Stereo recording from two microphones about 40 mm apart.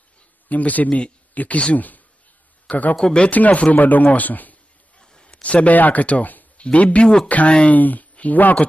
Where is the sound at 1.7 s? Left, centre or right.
Left.